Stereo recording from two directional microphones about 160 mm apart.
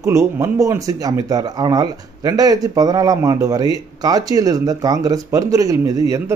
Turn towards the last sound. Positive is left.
turn(degrees=-20)  # may be behind; listen again after turning